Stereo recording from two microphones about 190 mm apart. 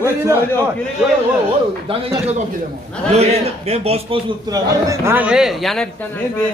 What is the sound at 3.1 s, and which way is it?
A man's voice, 35° right (ahead or behind).